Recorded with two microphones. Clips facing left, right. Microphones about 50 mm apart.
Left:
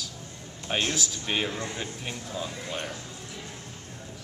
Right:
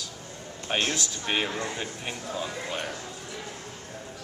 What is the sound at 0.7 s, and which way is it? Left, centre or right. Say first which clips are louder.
A man's voice: right 1 dB; centre.